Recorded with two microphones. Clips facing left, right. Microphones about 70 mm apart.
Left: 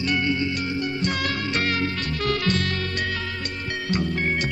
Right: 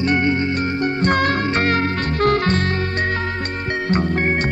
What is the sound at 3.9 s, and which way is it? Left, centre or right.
Music, right.